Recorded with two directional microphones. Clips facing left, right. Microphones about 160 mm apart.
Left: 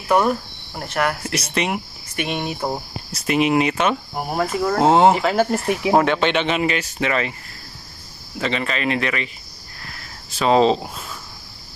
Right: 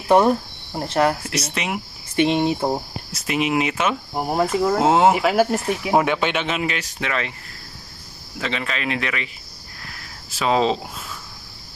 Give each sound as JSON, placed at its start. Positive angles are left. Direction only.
{"t": 0.1, "sound": "speech", "side_deg": -25}
{"t": 1.2, "sound": "speech", "side_deg": 0}
{"t": 2.1, "sound": "speech", "side_deg": -25}
{"t": 3.1, "sound": "speech", "side_deg": 0}
{"t": 4.1, "sound": "speech", "side_deg": -20}
{"t": 4.7, "sound": "speech", "side_deg": -5}
{"t": 5.7, "sound": "speech", "side_deg": 10}
{"t": 5.9, "sound": "speech", "side_deg": -10}
{"t": 8.4, "sound": "speech", "side_deg": 0}
{"t": 10.3, "sound": "speech", "side_deg": 0}